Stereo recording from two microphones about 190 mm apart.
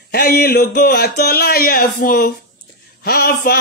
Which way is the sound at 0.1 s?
55° left (ahead or behind).